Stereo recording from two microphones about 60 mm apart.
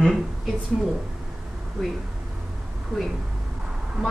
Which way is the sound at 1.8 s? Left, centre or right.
Centre.